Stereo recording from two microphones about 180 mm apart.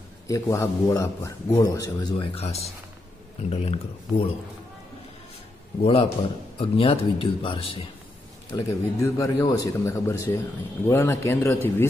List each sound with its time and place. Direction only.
0.3 s a man's voice: 15° left (ahead or behind)
2.3 s speech: 35° left (ahead or behind)
5.8 s speech: 30° left (ahead or behind)
8.5 s a man's voice: 15° left (ahead or behind)